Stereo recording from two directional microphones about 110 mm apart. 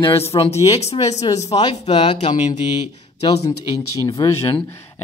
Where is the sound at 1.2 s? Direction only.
35° left (ahead or behind).